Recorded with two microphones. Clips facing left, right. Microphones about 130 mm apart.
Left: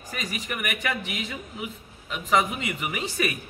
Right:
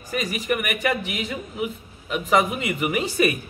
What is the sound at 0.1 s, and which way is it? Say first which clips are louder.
A man's voice: right 8 dB; 5° right (ahead or behind).